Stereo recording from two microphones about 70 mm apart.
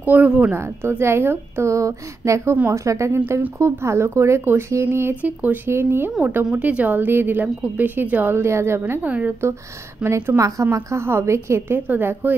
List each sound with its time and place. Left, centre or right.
0.0 s a woman's voice: right
5.2 s a woman's voice: right
5.7 s a woman's voice: right
6.2 s a woman's voice: right
9.0 s a woman's voice: right
10.0 s a woman's voice: right